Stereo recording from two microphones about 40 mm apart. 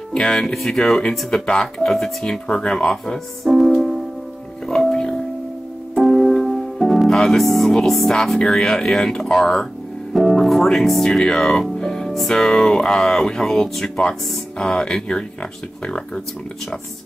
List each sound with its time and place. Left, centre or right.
0.7 s speech: centre
1.4 s speech: left
1.9 s speech: centre
3.4 s music: centre
5.9 s music: centre
7.1 s speech: centre